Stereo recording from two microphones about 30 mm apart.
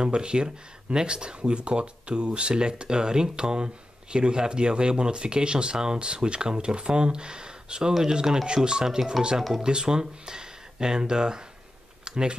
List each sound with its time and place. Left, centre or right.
0.0 s speech: right